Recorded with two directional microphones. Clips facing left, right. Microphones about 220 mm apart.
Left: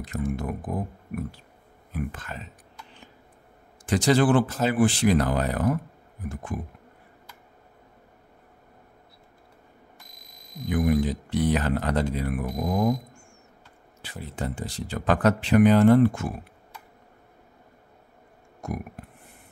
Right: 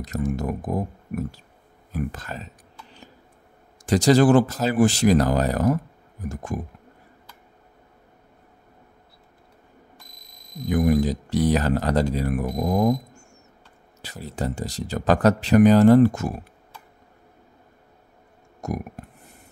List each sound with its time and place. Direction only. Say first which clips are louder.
0.0 s speech: right 3 dB; 40° right (ahead or behind)
1.9 s clicking: right 3 dB; 40° right (ahead or behind)
3.8 s speech: right 4 dB; 40° right (ahead or behind)
10.7 s speech: right 3 dB; 40° right (ahead or behind)
18.6 s burping: right 4 dB; 40° right (ahead or behind)